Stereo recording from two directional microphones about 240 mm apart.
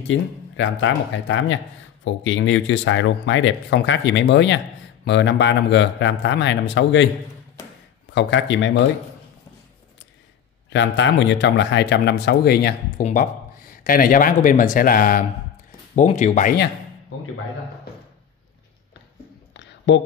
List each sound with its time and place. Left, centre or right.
0.1 s speech: left
8.1 s speech: left
10.7 s speech: left